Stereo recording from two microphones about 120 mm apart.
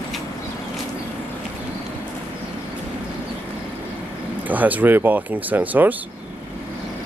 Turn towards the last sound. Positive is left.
turn(degrees=-15)  # may be behind; listen again after turning